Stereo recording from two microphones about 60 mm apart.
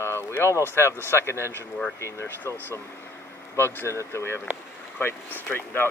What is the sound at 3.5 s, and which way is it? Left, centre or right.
Speech, left.